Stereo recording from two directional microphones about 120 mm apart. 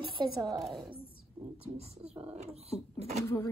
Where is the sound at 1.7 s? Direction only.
60° right (ahead or behind).